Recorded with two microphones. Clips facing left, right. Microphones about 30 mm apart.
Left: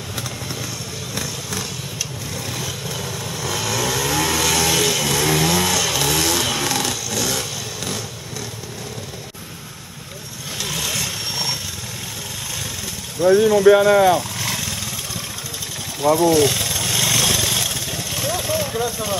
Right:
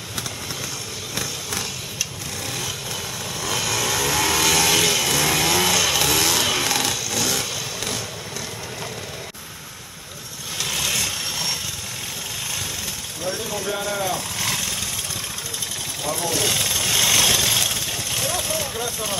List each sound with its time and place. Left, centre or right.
1.1 s vehicle: centre
10.6 s vehicle: centre
13.4 s speech: centre
13.7 s speech: left
14.4 s vehicle: centre
16.2 s vehicle: centre